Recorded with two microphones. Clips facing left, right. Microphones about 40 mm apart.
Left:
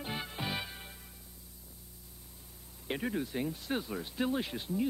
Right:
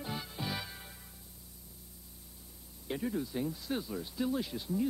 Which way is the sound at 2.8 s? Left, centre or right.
Left.